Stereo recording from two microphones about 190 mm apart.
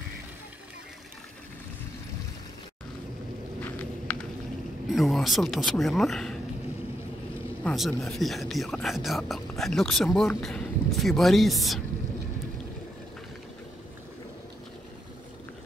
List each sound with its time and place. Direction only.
3.6 s walk: 10° left (ahead or behind)
4.9 s speech: centre (ahead or behind)
7.6 s speech: centre (ahead or behind)